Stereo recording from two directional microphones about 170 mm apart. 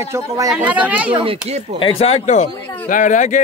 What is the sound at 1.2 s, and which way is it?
Speech, 35° right (ahead or behind).